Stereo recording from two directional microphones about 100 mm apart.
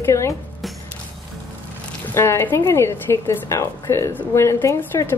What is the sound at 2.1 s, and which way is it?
Speech, 25° left (ahead or behind).